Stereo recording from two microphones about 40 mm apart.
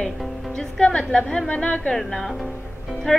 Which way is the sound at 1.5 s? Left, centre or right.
Left.